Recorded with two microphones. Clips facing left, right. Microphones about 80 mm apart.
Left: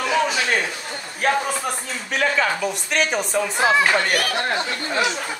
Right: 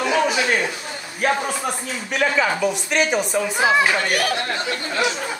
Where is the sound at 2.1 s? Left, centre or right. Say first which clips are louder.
Right 1 dB; centre.